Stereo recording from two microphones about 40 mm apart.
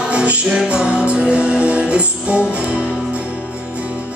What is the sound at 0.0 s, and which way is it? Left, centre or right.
Music, right.